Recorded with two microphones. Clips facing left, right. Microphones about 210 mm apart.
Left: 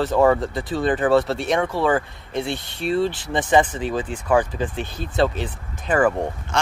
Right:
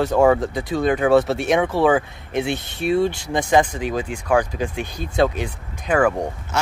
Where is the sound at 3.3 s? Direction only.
10° right (ahead or behind).